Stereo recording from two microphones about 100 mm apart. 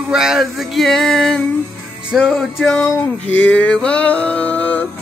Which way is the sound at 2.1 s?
5° right (ahead or behind).